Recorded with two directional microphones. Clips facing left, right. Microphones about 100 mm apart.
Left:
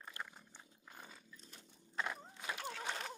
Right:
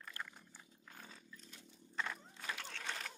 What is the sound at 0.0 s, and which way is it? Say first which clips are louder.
Roaring cats: left 1 dB; 20° left (ahead or behind).